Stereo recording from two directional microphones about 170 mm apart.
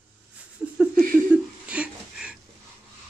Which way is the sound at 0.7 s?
5° right (ahead or behind).